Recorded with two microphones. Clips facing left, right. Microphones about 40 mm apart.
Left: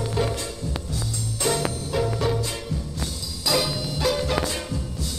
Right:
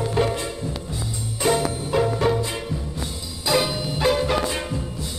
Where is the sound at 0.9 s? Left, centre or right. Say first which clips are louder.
Right 1 dB; right.